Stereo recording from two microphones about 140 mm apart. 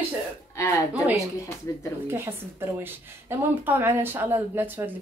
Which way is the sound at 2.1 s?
15° right (ahead or behind).